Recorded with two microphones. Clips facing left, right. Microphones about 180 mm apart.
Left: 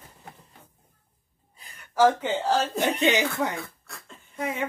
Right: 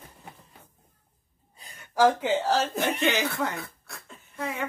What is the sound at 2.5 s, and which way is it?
Speech, centre (ahead or behind).